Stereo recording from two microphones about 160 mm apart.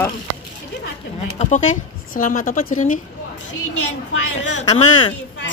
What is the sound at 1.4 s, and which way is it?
A woman's voice, 50° left (ahead or behind).